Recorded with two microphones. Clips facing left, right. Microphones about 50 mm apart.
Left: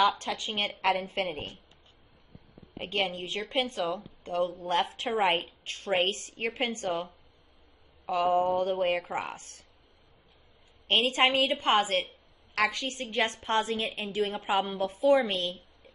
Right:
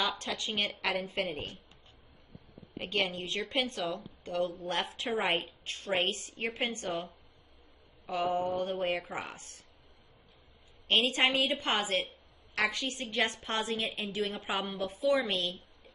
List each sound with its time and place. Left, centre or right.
0.2 s a woman's voice: left
0.8 s a woman's voice: left
1.3 s a woman's voice: left
2.8 s a woman's voice: left
8.1 s a woman's voice: left
10.9 s a woman's voice: left